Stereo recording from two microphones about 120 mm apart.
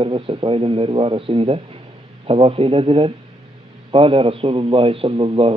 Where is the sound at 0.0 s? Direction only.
45° right (ahead or behind).